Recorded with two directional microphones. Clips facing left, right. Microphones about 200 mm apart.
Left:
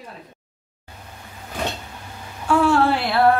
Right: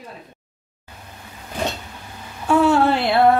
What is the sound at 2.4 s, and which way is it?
Speech, 20° right (ahead or behind).